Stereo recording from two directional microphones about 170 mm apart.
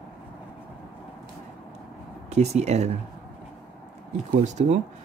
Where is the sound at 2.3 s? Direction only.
40° right (ahead or behind).